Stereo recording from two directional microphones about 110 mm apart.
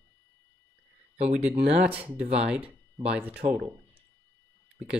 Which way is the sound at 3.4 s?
90° right.